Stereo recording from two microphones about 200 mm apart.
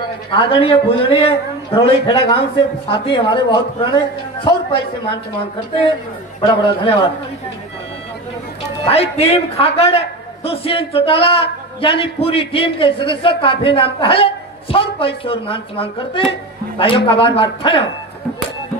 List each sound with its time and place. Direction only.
0.3 s a man's voice: 25° left (ahead or behind)
6.5 s a man's voice: 25° left (ahead or behind)
8.8 s a man's voice: 30° left (ahead or behind)